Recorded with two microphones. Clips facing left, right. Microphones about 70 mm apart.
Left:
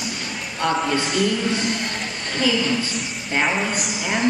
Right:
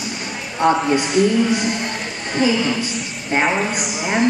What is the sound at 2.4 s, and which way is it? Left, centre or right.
A man's voice, right.